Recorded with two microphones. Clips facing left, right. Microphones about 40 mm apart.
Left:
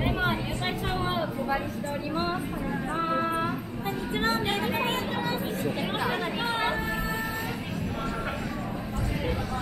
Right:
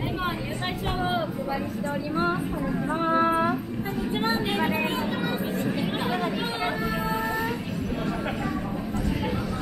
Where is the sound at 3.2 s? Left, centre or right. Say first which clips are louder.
Right 5 dB; right.